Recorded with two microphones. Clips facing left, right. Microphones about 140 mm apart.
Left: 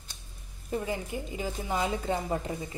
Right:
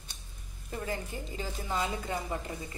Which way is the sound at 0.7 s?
15° left (ahead or behind).